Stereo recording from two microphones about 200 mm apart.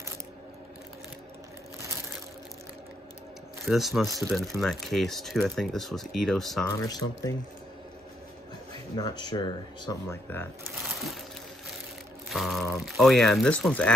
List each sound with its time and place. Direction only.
3.6 s speech: centre (ahead or behind)
6.8 s speech: 15° left (ahead or behind)
8.9 s speech: 20° left (ahead or behind)
10.0 s speech: 10° left (ahead or behind)
10.8 s crushing: centre (ahead or behind)
12.3 s speech: centre (ahead or behind)